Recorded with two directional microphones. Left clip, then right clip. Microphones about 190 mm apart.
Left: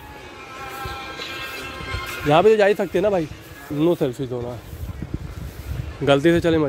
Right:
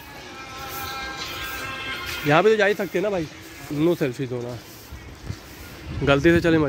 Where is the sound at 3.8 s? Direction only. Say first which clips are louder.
Left 2 dB; 15° left (ahead or behind).